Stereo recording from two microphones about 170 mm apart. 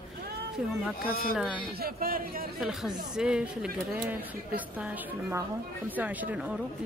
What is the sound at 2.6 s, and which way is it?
A woman's voice, centre (ahead or behind).